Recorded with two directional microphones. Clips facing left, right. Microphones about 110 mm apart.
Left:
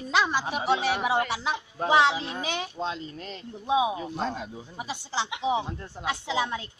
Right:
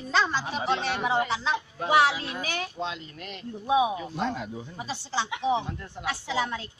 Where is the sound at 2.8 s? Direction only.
35° left (ahead or behind).